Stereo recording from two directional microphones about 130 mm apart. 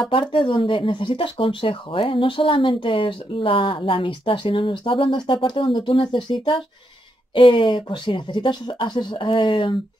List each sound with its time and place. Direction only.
0.1 s speech: 40° left (ahead or behind)